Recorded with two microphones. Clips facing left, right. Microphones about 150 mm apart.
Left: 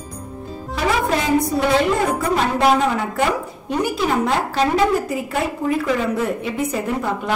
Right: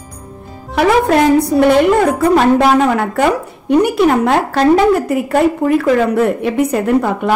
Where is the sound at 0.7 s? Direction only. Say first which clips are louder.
Right 8 dB; 65° right (ahead or behind).